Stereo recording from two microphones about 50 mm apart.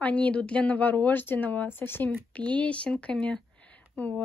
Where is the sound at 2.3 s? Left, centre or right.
Left.